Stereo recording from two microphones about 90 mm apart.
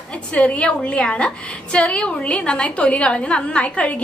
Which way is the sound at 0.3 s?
15° left (ahead or behind).